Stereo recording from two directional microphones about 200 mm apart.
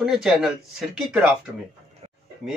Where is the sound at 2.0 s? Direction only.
30° right (ahead or behind).